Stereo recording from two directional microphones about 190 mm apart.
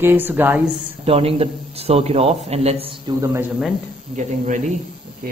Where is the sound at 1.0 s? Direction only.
30° right (ahead or behind).